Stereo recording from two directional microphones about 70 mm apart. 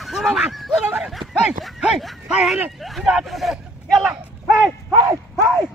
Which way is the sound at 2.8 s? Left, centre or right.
Centre.